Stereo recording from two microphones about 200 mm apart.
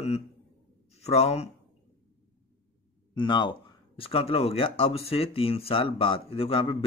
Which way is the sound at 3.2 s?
25° left (ahead or behind).